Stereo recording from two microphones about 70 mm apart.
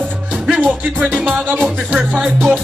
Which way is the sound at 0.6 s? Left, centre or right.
Right.